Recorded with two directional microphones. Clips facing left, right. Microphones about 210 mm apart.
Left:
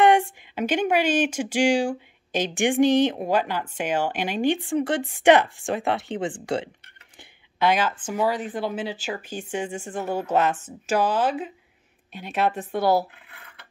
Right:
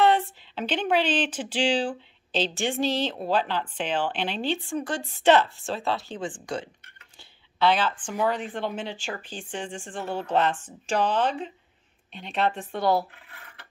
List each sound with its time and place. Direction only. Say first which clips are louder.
0.0 s a woman's voice: left 3 dB; 15° left (ahead or behind)
7.2 s a sound: left 1 dB; 10° left (ahead or behind)
8.1 s a woman's voice: left 2 dB; 5° left (ahead or behind)